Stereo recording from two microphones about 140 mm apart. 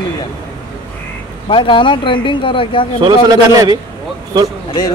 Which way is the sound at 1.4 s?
35° left (ahead or behind).